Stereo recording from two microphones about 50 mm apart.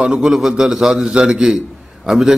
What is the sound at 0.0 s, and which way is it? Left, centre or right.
A man's voice, centre.